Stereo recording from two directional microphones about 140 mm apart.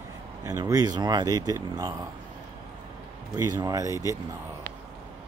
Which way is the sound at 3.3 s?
25° right (ahead or behind).